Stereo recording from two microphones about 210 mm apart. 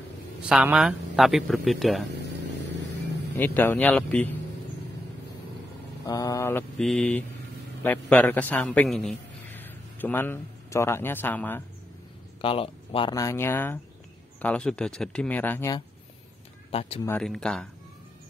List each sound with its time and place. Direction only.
0.5 s speech: 5° right (ahead or behind)
3.3 s speech: 10° left (ahead or behind)
6.0 s mantra: 15° left (ahead or behind)
7.8 s a man's voice: 5° left (ahead or behind)
12.4 s speech: 25° left (ahead or behind)
17.0 s speech: 5° left (ahead or behind)